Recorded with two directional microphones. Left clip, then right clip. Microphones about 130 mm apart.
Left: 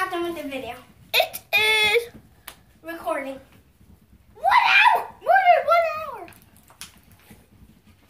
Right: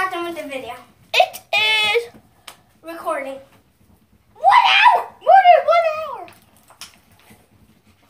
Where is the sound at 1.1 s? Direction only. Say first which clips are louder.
Right 4 dB; 20° left (ahead or behind).